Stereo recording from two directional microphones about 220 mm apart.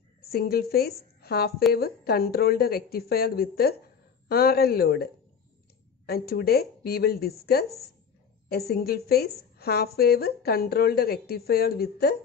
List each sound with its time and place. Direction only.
0.2 s a woman's voice: 45° left (ahead or behind)